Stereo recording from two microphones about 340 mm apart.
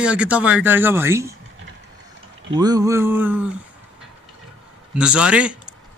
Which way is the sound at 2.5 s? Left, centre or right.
Centre.